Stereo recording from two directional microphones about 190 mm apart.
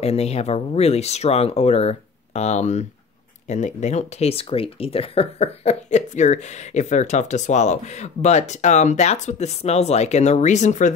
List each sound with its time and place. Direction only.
0.0 s speech: 35° left (ahead or behind)